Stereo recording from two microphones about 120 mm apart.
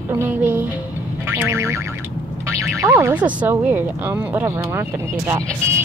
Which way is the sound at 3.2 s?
10° right (ahead or behind).